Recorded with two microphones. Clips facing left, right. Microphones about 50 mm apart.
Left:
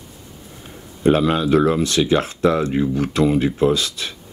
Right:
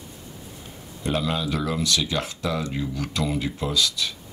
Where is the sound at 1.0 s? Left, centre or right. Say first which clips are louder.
Left 9 dB; left.